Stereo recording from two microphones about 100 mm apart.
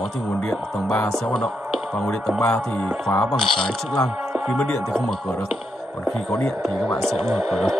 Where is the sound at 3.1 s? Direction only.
25° left (ahead or behind).